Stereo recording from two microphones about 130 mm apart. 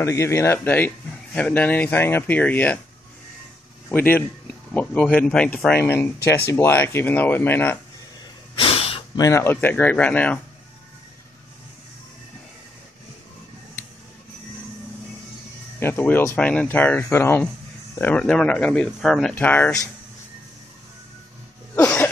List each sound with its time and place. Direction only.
0.0 s speech: 25° left (ahead or behind)
3.9 s speech: 15° left (ahead or behind)
8.5 s a sound: 45° left (ahead or behind)
9.1 s speech: 25° left (ahead or behind)
15.8 s speech: 15° left (ahead or behind); by 19.3 s centre (ahead or behind)
19.3 s speech: 15° left (ahead or behind)